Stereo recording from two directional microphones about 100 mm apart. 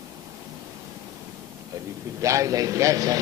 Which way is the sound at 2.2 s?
30° right (ahead or behind).